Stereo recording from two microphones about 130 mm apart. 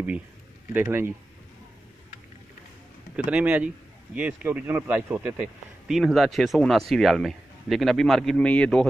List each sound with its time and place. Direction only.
0.7 s speech: 15° right (ahead or behind)
3.3 s a man's voice: 10° right (ahead or behind); by 8.8 s 5° left (ahead or behind)